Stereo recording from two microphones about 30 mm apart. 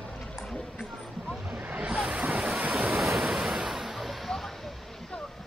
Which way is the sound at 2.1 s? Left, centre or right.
Right.